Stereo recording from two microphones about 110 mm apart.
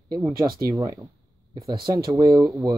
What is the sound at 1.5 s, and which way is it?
Speech, 45° right (ahead or behind).